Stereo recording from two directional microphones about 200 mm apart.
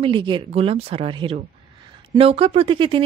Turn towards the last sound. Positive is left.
turn(degrees=-25)  # may be behind; listen again after turning